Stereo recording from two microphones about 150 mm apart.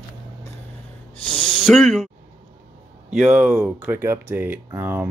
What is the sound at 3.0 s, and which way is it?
Speech, 10° right (ahead or behind).